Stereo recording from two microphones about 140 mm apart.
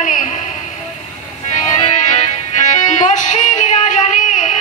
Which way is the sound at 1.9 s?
60° left (ahead or behind).